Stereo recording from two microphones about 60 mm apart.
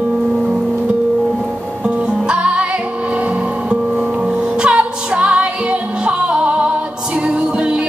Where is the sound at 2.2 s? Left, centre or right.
Centre.